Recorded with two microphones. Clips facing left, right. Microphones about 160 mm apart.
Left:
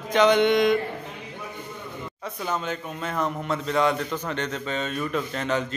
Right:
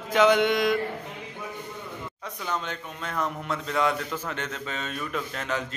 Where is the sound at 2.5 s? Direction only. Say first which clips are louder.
Left 3 dB; 5° left (ahead or behind).